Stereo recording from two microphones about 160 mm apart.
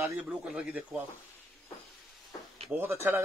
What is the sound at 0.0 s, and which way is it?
Speech, 10° right (ahead or behind).